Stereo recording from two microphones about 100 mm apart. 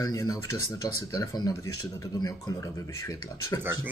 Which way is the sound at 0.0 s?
40° left (ahead or behind).